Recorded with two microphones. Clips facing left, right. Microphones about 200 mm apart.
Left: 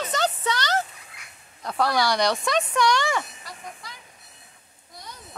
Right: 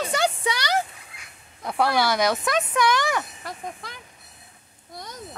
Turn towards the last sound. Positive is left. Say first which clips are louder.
# right 5 dB
turn(degrees=-55)  # may be behind; listen again after turning